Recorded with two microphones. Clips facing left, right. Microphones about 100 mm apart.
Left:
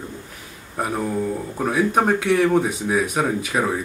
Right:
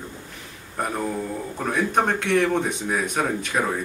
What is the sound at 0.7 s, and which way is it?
A man's voice, 5° left (ahead or behind).